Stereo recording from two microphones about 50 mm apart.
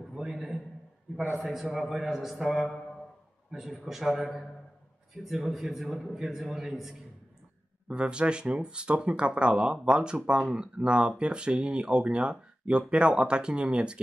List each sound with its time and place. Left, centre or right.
0.0 s a man's voice: centre
3.8 s a man's voice: centre
7.9 s speech: right